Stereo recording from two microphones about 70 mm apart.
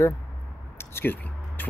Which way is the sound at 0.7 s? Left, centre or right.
Left.